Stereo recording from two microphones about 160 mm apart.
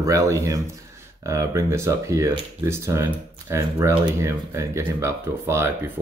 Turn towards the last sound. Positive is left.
turn(degrees=-15)  # may be behind; listen again after turning